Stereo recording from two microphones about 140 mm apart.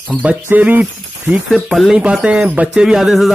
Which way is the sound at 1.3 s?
Centre (ahead or behind).